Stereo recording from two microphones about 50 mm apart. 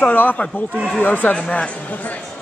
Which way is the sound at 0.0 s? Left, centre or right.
Left.